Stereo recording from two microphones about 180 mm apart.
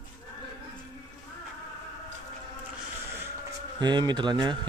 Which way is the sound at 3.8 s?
25° right (ahead or behind).